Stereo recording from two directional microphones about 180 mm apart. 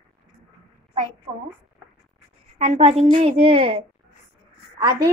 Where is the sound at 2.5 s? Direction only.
40° right (ahead or behind).